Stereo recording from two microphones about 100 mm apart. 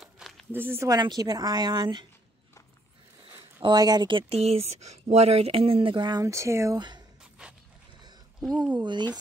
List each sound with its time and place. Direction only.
0.0 s a sound: centre (ahead or behind)
0.5 s speech: 20° right (ahead or behind)
0.8 s a woman's voice: 40° right (ahead or behind)
3.6 s a woman's voice: 45° right (ahead or behind)
4.2 s speech: 90° right; by 6.8 s 30° right (ahead or behind)
6.8 s speech: 50° right (ahead or behind)
7.4 s a sound: 10° right (ahead or behind)
8.7 s a woman's voice: 50° right (ahead or behind)